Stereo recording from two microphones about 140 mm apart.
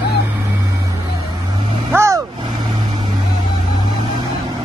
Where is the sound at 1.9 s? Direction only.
20° right (ahead or behind).